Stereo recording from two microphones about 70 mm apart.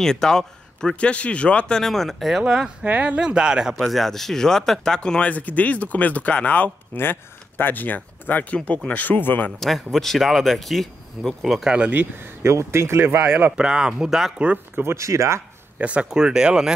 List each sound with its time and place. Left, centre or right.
0.0 s speech: centre
2.8 s speech: centre
3.8 s speech: centre; by 9.5 s left
9.6 s speech: centre
11.9 s speech: right
12.4 s speech: right
13.2 s speech: centre
14.8 s speech: right
15.8 s speech: centre